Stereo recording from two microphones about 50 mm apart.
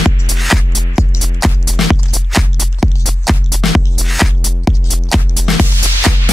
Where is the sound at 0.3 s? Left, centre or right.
Centre.